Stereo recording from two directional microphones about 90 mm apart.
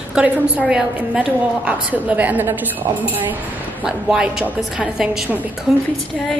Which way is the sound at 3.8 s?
5° right (ahead or behind).